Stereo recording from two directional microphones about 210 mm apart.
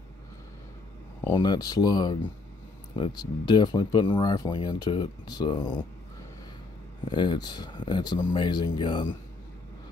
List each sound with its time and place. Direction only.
1.3 s speech: 20° left (ahead or behind)
7.1 s speech: 20° left (ahead or behind)